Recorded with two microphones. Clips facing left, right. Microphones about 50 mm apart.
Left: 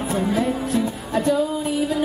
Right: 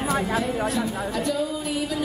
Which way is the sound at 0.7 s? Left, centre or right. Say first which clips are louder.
Left 3 dB; left.